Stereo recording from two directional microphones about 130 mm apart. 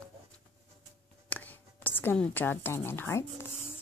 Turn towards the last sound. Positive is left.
turn(degrees=20)  # may be behind; listen again after turning